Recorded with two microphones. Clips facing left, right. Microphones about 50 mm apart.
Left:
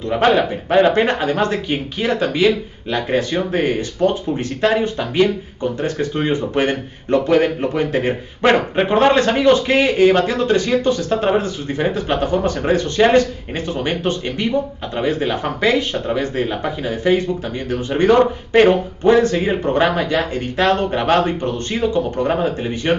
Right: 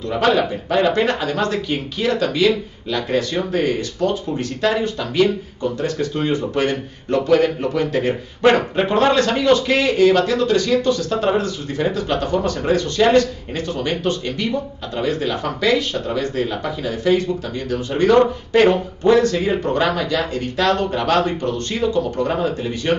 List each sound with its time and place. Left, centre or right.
0.1 s speech: left